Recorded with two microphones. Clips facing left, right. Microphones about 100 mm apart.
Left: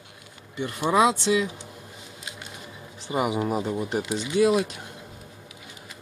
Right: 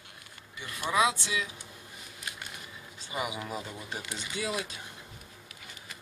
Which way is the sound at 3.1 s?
45° left (ahead or behind).